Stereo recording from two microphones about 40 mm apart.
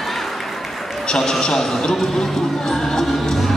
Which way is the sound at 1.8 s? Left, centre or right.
Centre.